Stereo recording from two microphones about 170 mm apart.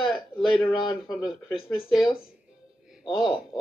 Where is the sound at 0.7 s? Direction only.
25° left (ahead or behind).